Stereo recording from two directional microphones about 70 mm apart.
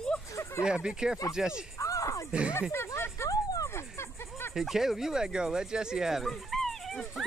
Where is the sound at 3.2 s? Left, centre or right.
Left.